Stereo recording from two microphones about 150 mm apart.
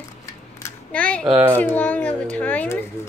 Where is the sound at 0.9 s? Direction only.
10° left (ahead or behind).